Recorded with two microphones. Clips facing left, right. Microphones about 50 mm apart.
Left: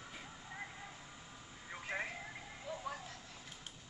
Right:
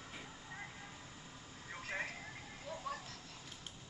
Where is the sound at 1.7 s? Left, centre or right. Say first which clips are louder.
Left 1 dB; centre.